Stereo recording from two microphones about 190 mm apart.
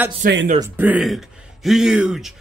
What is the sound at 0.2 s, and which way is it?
Speech, 45° right (ahead or behind).